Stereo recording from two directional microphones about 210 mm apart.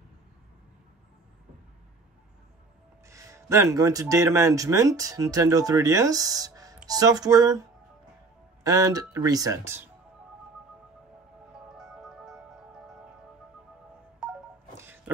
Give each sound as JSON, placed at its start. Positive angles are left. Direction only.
{"t": 3.1, "sound": "speech", "side_deg": -15}
{"t": 8.6, "sound": "speech", "side_deg": -15}
{"t": 11.7, "sound": "music", "side_deg": 0}
{"t": 14.8, "sound": "music", "side_deg": -10}